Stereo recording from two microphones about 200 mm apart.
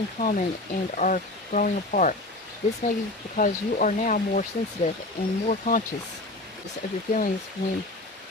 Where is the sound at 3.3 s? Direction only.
40° left (ahead or behind).